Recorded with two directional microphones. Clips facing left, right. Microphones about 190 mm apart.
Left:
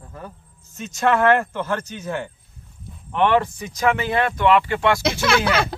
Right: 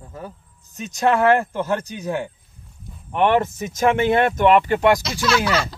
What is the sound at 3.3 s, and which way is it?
Speech, 45° right (ahead or behind).